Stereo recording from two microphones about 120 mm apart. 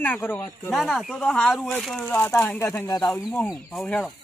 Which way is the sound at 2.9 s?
30° left (ahead or behind).